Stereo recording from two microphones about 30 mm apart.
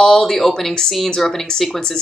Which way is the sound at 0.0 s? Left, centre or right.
Centre.